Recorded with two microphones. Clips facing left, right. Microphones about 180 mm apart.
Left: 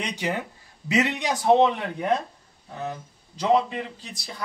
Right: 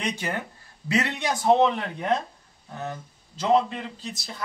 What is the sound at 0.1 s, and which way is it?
Speech, 15° left (ahead or behind).